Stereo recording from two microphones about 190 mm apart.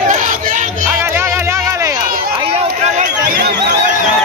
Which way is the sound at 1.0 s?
10° right (ahead or behind).